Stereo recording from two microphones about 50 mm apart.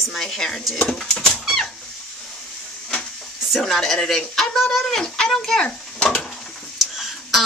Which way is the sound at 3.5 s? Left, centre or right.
Centre.